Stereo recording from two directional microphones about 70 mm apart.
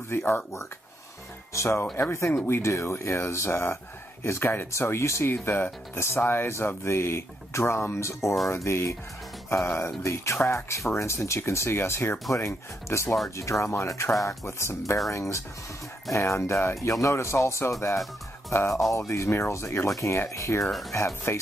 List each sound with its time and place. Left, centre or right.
0.1 s speech: left
1.5 s speech: left